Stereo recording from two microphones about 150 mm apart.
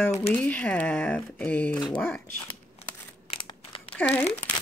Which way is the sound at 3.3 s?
35° left (ahead or behind).